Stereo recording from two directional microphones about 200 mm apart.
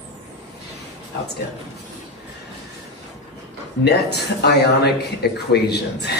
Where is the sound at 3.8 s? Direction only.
55° left (ahead or behind).